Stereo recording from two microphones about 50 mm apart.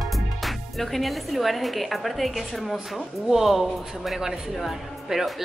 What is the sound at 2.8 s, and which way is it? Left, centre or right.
Speech, centre.